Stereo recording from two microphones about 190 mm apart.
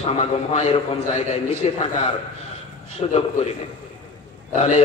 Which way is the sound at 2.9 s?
35° left (ahead or behind).